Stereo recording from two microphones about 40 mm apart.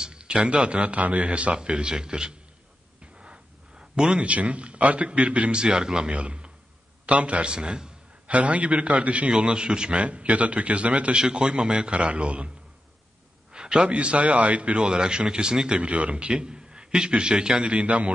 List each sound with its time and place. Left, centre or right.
0.0 s speech: right
1.5 s a man's voice: right
3.2 s a sound: right
4.3 s a man's voice: right; by 6.1 s centre
6.1 s a man's voice: right
8.3 s a man's voice: right
9.3 s a man's voice: right
10.0 s a man's voice: right
11.1 s a man's voice: centre
13.5 s a sound: right
13.8 s a man's voice: right
15.8 s a man's voice: right
17.6 s a man's voice: right